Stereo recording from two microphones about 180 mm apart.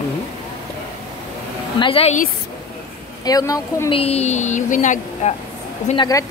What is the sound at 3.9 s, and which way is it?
Speech, 35° left (ahead or behind).